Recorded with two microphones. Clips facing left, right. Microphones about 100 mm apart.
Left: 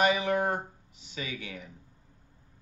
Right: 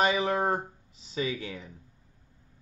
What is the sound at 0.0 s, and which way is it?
Speech, 30° right (ahead or behind).